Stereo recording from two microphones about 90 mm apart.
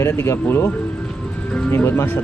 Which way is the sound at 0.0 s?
30° left (ahead or behind).